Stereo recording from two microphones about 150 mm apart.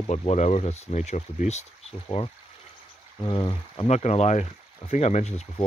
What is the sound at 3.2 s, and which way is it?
Speech, 30° left (ahead or behind).